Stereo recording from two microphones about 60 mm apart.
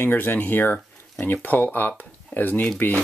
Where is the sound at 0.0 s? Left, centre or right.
Left.